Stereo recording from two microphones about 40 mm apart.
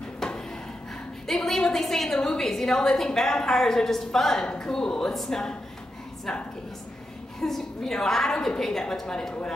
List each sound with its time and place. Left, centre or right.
1.2 s a woman's voice: centre
5.1 s speech: centre
7.3 s a woman's voice: centre